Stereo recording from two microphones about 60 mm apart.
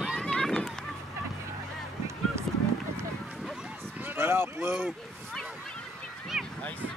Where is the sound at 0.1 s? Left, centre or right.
Centre.